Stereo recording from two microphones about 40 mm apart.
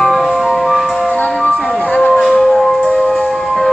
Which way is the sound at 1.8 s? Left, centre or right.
Left.